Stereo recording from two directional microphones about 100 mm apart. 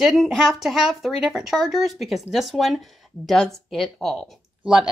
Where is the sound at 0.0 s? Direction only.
Centre (ahead or behind).